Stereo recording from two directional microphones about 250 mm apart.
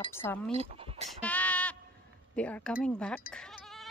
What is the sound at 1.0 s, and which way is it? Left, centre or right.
Sheep, centre.